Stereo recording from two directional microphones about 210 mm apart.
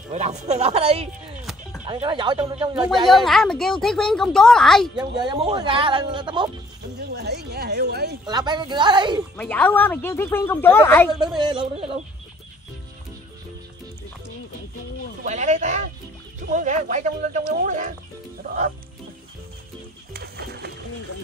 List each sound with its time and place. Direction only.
0.1 s speech: 35° right (ahead or behind)
3.1 s a woman's voice: centre (ahead or behind)
4.9 s speech: 20° right (ahead or behind)
7.2 s speech: 50° right (ahead or behind)
8.3 s speech: 20° right (ahead or behind)
9.4 s a woman's voice: 10° left (ahead or behind)
11.1 s speech: 20° right (ahead or behind)
15.2 s speech: 35° right (ahead or behind)
20.1 s music: 50° right (ahead or behind)